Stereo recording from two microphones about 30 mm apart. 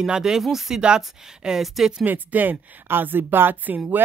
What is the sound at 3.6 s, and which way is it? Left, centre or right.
Speech, right.